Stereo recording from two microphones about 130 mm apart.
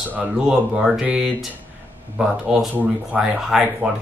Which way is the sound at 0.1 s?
10° right (ahead or behind).